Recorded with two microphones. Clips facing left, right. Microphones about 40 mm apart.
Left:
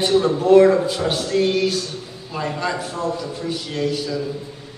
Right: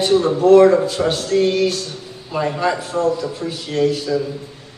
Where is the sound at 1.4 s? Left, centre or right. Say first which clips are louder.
Right 2 dB; centre.